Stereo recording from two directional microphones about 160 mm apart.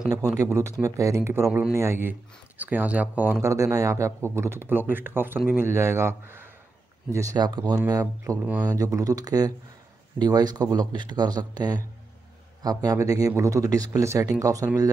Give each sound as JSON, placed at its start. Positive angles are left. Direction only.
{"t": 0.4, "sound": "speech", "side_deg": -20}